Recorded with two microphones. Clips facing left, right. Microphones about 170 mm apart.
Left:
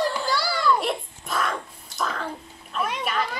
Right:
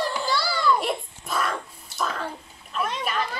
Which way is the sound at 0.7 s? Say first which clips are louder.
Even; centre (ahead or behind).